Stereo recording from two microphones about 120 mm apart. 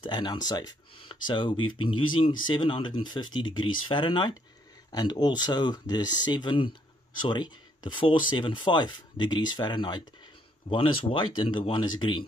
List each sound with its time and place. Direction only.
0.0 s speech: 40° left (ahead or behind)